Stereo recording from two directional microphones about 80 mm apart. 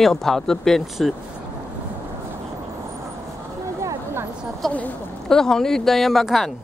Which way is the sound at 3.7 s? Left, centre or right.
Right.